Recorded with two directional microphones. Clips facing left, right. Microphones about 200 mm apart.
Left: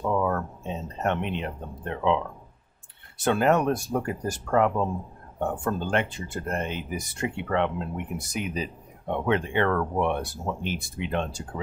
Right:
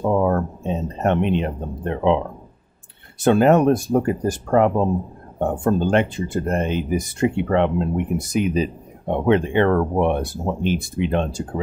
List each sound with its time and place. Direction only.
0.0 s speech: 35° right (ahead or behind)